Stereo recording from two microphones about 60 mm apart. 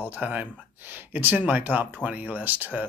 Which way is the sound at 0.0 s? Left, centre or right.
Right.